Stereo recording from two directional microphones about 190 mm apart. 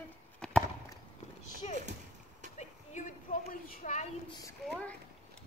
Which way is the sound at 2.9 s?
40° left (ahead or behind).